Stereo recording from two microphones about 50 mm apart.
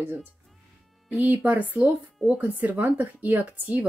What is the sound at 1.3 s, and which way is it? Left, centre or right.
Speech, right.